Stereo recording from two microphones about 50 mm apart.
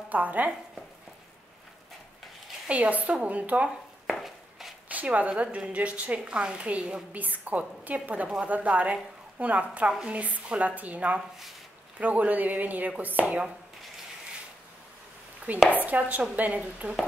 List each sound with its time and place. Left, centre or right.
0.1 s a woman's voice: right
2.7 s a woman's voice: right
4.2 s a sound: centre
4.8 s a sound: right
5.4 s a woman's voice: right
11.1 s speech: centre
12.0 s a woman's voice: right
15.5 s a woman's voice: right